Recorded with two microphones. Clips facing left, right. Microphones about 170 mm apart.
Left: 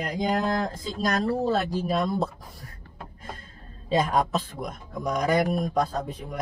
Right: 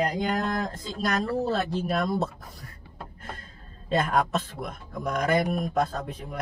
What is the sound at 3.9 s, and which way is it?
Speech, centre (ahead or behind).